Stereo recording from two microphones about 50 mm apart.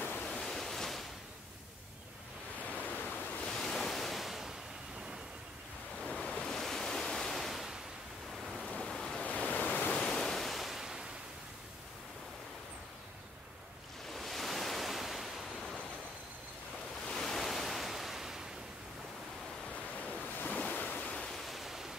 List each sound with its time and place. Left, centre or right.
0.3 s waves: centre
2.7 s ocean: left
3.4 s waves: centre
6.0 s waves: centre
8.5 s rain: centre
8.7 s waves: centre
9.2 s waves: left
9.9 s ocean: centre
14.1 s waves: centre
15.5 s waves: centre
17.0 s waves: centre
20.3 s waves: left
21.4 s pink noise: centre